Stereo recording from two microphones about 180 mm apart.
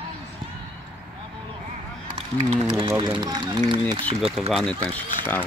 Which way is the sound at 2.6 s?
25° right (ahead or behind).